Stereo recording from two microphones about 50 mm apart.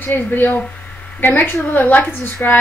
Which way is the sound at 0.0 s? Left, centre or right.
Left.